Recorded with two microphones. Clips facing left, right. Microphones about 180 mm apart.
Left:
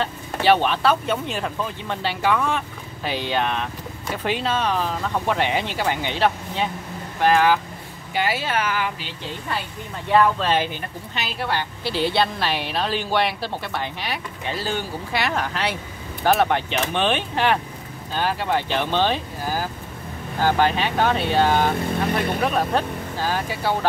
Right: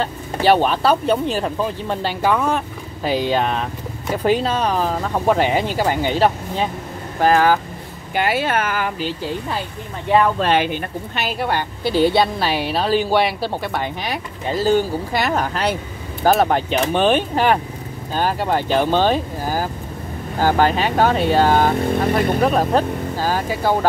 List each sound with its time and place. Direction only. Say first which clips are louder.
0.0 s a woman's voice: right 3 dB; 40° right (ahead or behind)
8.1 s a woman's voice: right 4 dB; 55° right (ahead or behind)
10.4 s a woman's voice: right 4 dB; 65° right (ahead or behind); by 23.9 s 45° right (ahead or behind)